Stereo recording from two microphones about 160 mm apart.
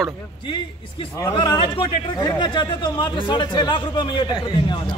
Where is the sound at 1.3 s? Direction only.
30° left (ahead or behind).